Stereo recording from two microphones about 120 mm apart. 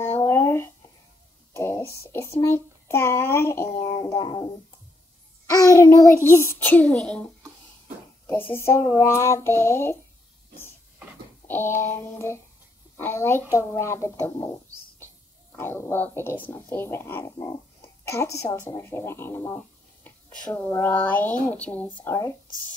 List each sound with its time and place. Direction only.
0.0 s a sound: 15° left (ahead or behind)
2.1 s speech: 20° left (ahead or behind)
8.3 s speech: 15° left (ahead or behind)
11.4 s a woman's voice: 15° left (ahead or behind)
22.1 s speech: 30° left (ahead or behind)